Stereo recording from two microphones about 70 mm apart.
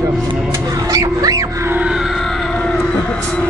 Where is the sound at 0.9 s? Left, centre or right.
Right.